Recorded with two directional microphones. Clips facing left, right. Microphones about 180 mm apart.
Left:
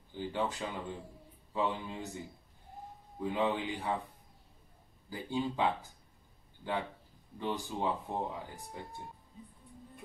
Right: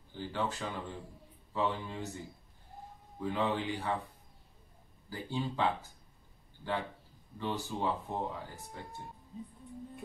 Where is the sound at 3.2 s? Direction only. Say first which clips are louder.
Left 1 dB; 15° left (ahead or behind).